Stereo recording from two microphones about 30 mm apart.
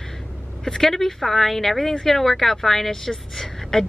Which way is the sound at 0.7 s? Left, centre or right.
Left.